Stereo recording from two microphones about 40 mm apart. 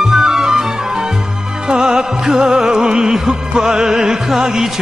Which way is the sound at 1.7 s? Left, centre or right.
Centre.